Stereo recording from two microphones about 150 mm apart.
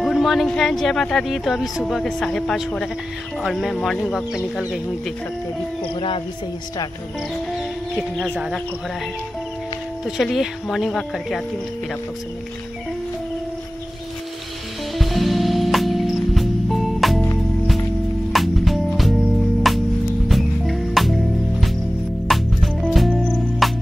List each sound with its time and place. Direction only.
0.0 s speech: centre (ahead or behind)
5.9 s speech: 35° left (ahead or behind)
7.5 s music: centre (ahead or behind)
10.0 s speech: centre (ahead or behind)
15.0 s music: centre (ahead or behind)
18.3 s music: centre (ahead or behind)